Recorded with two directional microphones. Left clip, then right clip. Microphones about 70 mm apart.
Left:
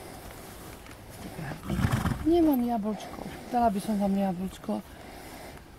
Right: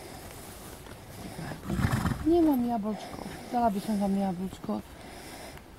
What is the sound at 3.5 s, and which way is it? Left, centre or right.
Speech, left.